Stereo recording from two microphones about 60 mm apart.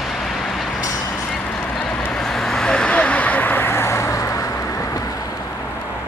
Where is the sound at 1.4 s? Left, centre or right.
Left.